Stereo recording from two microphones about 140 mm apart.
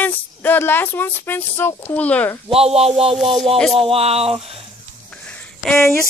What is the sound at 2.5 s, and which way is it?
Speech, 45° right (ahead or behind).